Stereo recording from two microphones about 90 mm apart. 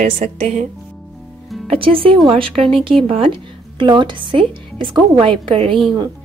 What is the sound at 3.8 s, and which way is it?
A woman's voice, 60° right (ahead or behind).